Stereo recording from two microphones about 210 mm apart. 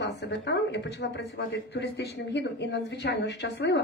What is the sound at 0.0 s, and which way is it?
A woman's voice, 55° left (ahead or behind).